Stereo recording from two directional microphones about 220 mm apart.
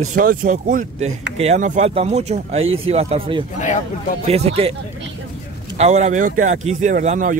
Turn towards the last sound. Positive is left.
turn(degrees=-35)  # may be behind; listen again after turning